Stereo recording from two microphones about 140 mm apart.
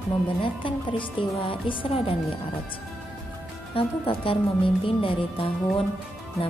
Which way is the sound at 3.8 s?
40° left (ahead or behind).